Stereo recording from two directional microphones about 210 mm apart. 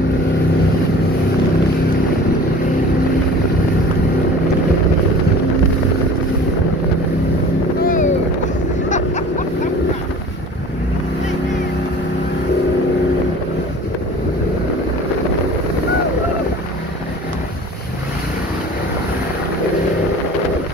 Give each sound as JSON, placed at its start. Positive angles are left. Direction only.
{"t": 7.8, "sound": "boat", "side_deg": 40}
{"t": 8.8, "sound": "vehicle", "side_deg": 35}